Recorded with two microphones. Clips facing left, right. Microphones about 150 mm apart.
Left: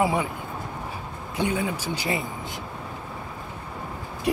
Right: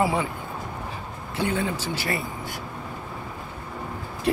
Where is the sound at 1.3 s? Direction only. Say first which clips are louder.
Even; 15° left (ahead or behind).